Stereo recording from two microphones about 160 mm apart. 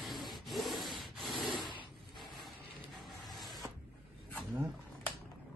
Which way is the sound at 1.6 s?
30° left (ahead or behind).